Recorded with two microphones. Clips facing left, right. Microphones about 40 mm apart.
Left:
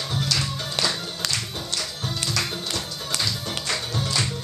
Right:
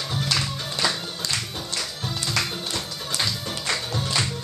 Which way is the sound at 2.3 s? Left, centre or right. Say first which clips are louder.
Even; centre.